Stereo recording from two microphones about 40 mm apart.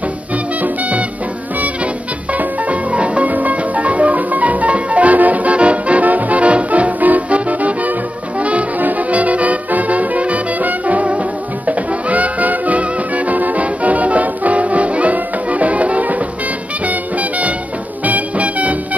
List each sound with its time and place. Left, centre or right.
0.6 s music: right
2.3 s music: right
8.4 s brass instrument: right
8.8 s music: right